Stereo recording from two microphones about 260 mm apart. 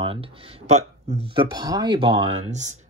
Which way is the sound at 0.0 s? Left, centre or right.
Right.